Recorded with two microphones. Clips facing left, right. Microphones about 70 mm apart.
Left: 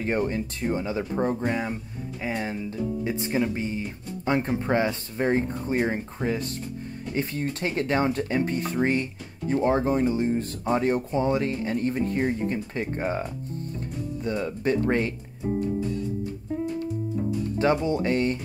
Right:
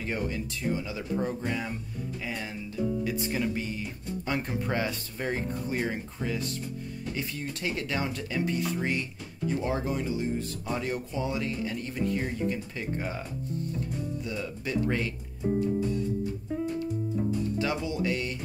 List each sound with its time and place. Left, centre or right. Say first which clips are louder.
0.0 s speech: left 6 dB; left
17.6 s speech: left 7 dB; left